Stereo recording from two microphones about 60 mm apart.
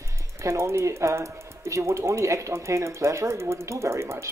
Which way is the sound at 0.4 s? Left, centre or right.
Right.